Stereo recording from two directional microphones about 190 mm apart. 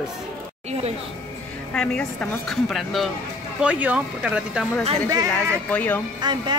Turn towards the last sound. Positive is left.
turn(degrees=-25)  # may be behind; listen again after turning